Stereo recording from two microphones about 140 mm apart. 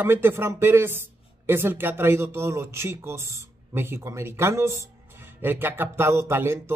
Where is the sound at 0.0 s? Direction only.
15° right (ahead or behind).